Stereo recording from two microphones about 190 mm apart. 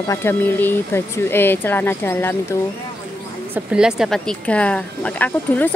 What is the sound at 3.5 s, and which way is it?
A woman's voice, 5° right (ahead or behind).